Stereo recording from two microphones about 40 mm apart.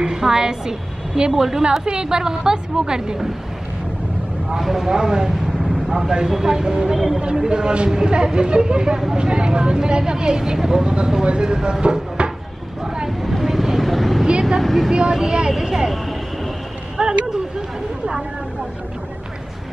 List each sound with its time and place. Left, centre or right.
0.2 s a woman's voice: centre
4.5 s a woman's voice: centre
5.6 s vehicle: centre
6.1 s a woman's voice: centre
7.2 s speech: right
12.2 s cupboard open or close: right
12.8 s vehicle: centre
13.2 s vehicle: centre
14.6 s speech: centre
14.9 s a woman's voice: centre
17.0 s a sound: right